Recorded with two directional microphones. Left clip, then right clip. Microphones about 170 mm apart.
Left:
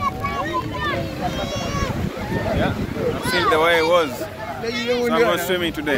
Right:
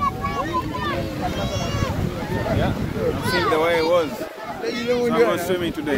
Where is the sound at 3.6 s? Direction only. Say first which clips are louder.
Left 3 dB; 5° right (ahead or behind).